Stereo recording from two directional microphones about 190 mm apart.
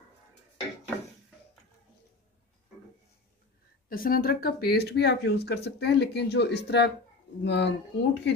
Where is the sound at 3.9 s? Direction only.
50° left (ahead or behind).